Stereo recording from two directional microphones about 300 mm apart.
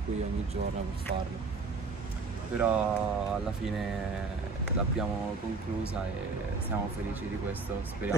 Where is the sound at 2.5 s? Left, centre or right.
Centre.